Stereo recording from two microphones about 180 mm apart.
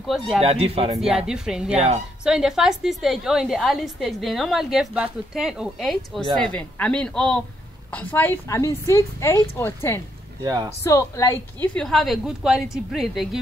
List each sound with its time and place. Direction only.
0.0 s a woman's voice: centre (ahead or behind)
0.4 s speech: 35° right (ahead or behind)
1.0 s a woman's voice: 5° right (ahead or behind); by 10.0 s 15° left (ahead or behind)
10.4 s speech: 20° right (ahead or behind)
10.8 s a woman's voice: 15° left (ahead or behind); by 13.4 s centre (ahead or behind)